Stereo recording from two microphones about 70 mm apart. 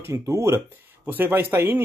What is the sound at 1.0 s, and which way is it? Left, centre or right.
Speech, right.